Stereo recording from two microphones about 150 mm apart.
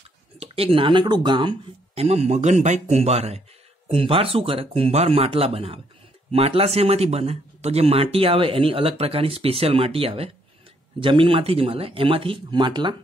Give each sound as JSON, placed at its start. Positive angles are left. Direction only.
{"t": 0.4, "sound": "speech", "side_deg": -40}
{"t": 2.0, "sound": "a man's voice", "side_deg": -45}